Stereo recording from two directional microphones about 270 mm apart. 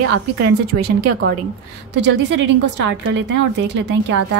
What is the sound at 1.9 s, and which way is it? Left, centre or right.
A woman's voice, right.